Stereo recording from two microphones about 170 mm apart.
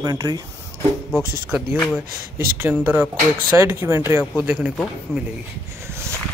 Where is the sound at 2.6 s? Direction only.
10° right (ahead or behind).